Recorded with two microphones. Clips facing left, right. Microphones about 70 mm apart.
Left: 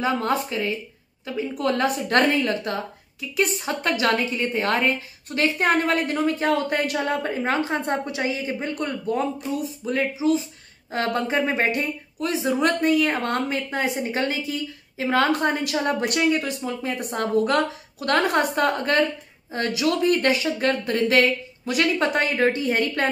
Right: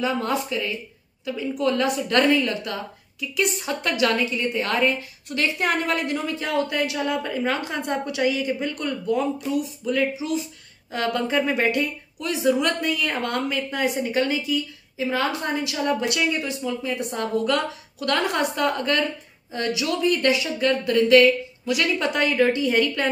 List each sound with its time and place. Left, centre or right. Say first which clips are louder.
0.0 s a woman's voice: left 1 dB; left